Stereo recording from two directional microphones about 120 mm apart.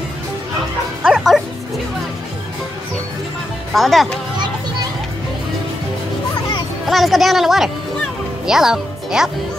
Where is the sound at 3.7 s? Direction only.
Centre (ahead or behind).